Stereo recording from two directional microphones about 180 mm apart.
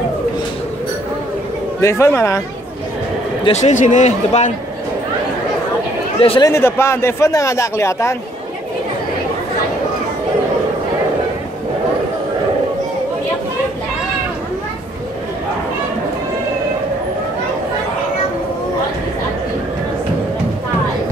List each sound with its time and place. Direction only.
1.8 s a man's voice: 15° left (ahead or behind)
3.4 s speech: 40° left (ahead or behind)
6.2 s speech: 30° left (ahead or behind)
6.5 s a man's voice: 15° left (ahead or behind)